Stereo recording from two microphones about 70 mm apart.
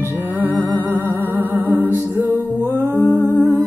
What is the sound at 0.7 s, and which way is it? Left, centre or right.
Music, right.